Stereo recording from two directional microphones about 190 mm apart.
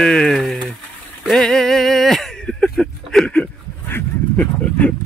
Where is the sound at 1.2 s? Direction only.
Centre (ahead or behind).